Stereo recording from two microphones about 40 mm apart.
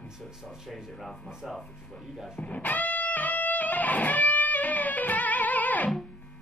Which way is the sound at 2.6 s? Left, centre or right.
Left.